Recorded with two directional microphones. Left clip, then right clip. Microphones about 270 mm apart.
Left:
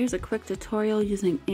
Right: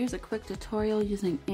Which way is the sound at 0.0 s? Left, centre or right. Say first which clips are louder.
Left 5 dB; centre.